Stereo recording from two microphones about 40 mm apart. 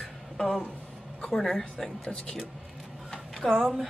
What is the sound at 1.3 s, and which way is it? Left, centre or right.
Speech, centre.